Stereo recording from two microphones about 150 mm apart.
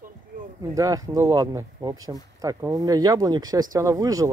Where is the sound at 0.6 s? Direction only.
25° right (ahead or behind).